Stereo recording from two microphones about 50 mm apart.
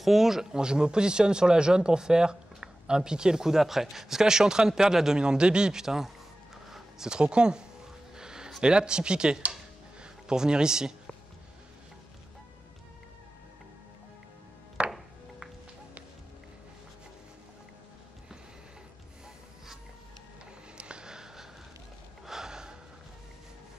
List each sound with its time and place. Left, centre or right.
0.0 s a man's voice: centre
14.8 s music: centre
20.7 s a sound: right
22.2 s gasp: centre